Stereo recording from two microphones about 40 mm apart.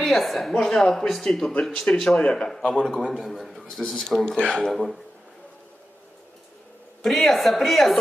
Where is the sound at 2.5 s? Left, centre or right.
Centre.